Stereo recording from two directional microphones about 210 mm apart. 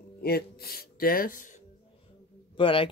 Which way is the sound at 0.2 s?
45° left (ahead or behind).